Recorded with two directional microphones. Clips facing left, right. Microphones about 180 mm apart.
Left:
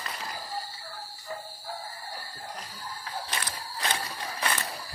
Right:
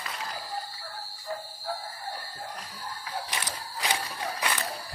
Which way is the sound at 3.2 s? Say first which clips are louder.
Even; 15° right (ahead or behind).